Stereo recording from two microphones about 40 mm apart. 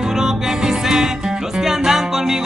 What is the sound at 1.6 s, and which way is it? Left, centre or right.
Music, centre.